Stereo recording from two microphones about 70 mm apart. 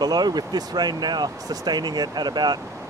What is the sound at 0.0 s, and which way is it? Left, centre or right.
Speech, right.